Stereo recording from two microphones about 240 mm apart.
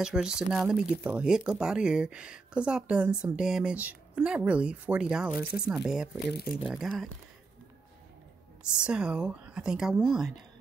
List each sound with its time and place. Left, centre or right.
0.0 s speech: centre
6.3 s speech: left
6.6 s speech: centre
8.7 s speech: centre